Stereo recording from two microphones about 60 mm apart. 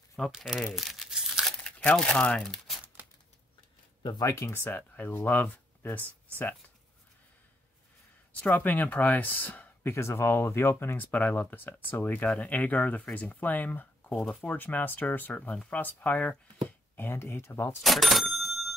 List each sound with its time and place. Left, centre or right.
0.2 s speech: centre
0.7 s tearing: centre
1.6 s speech: centre
4.3 s speech: left
4.6 s speech: left
8.3 s speech: left
9.9 s speech: left
16.9 s speech: left
17.8 s cash register: centre